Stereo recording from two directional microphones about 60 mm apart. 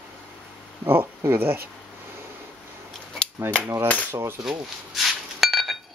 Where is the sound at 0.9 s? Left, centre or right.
Right.